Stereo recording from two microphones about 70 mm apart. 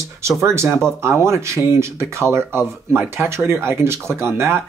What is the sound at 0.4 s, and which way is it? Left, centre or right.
Speech, right.